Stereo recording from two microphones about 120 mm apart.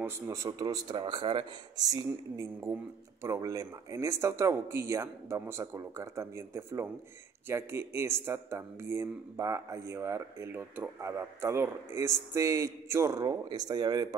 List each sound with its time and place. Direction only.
0.0 s a man's voice: 25° right (ahead or behind); by 1.4 s 45° right (ahead or behind)
1.8 s a man's voice: 30° right (ahead or behind)